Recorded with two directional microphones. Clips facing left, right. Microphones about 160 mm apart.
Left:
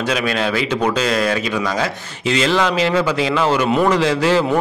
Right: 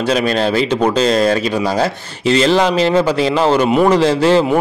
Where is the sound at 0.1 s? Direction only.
35° right (ahead or behind).